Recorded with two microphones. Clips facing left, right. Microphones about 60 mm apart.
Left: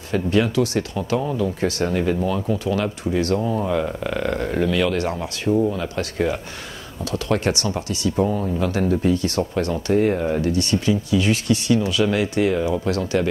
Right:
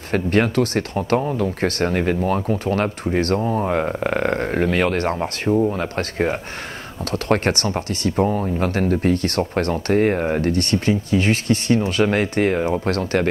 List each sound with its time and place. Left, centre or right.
0.1 s speech: right